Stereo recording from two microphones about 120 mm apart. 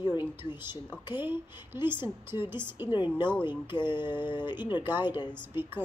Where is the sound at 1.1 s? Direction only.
20° right (ahead or behind).